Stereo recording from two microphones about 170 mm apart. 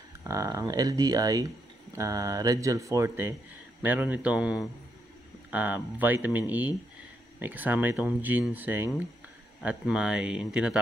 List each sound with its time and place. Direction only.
0.2 s speech: 20° right (ahead or behind)